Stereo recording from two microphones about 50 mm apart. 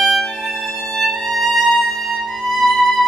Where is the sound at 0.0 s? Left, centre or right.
Centre.